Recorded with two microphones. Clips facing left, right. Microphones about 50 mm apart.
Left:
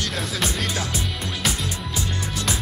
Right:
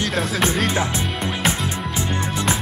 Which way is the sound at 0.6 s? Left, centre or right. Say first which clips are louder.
Right 5 dB; right.